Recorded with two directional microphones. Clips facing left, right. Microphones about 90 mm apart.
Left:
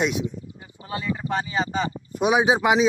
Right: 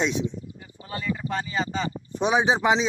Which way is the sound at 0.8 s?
25° left (ahead or behind).